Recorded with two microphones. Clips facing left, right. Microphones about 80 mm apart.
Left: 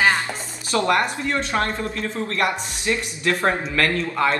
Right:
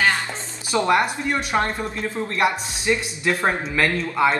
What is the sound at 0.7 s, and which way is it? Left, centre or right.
Speech, centre.